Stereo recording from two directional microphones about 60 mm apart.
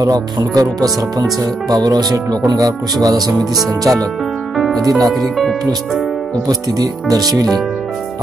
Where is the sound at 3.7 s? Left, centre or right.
Right.